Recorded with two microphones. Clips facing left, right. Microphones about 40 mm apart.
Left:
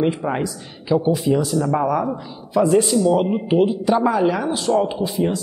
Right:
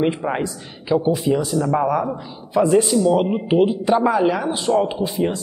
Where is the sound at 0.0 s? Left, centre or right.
Centre.